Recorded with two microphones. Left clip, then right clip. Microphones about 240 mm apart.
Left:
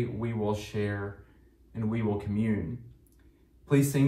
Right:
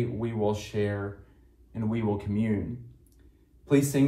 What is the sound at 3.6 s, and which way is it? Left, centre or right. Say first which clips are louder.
Speech: right 3 dB; right.